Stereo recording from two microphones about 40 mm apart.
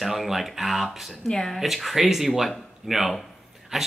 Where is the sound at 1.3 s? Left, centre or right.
Centre.